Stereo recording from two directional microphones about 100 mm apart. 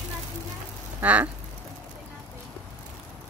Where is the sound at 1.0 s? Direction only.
15° right (ahead or behind).